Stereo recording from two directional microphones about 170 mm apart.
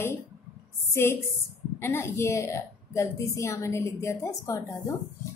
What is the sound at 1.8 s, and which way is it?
A woman's voice, 15° left (ahead or behind).